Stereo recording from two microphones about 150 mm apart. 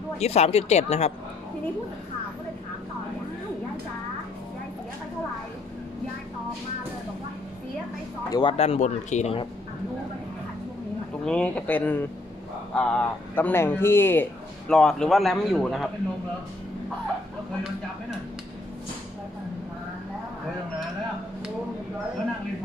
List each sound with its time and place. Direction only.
0.2 s speech: 45° left (ahead or behind)
8.3 s speech: 30° left (ahead or behind)
8.5 s speech: 45° left (ahead or behind)
11.2 s speech: 5° left (ahead or behind)
14.7 s speech: 5° left (ahead or behind)